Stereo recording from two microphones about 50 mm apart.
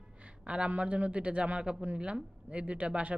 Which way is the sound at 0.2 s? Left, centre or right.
Right.